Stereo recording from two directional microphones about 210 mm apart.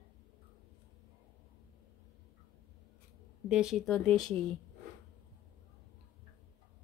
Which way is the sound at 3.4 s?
5° right (ahead or behind).